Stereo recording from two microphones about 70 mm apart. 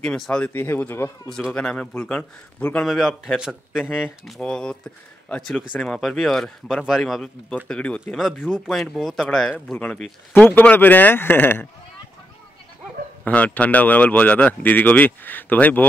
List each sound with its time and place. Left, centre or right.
0.0 s speech: centre
0.5 s speech: left
1.5 s speech: centre
2.8 s speech: centre
4.4 s speech: centre
7.6 s speech: centre
8.6 s speech: centre
10.3 s speech: left
13.2 s speech: left